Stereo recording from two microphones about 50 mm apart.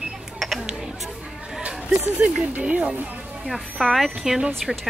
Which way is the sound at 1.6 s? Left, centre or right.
Right.